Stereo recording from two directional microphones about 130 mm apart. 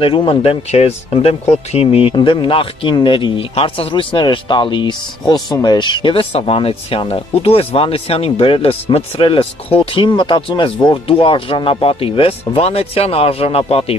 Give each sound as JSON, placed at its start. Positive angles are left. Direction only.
{"t": 0.0, "sound": "a man's voice", "side_deg": 45}